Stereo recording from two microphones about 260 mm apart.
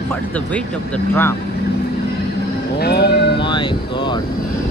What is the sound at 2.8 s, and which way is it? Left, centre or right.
Speech, left.